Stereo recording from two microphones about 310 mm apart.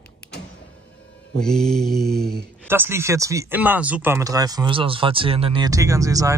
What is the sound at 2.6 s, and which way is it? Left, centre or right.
Speech, centre.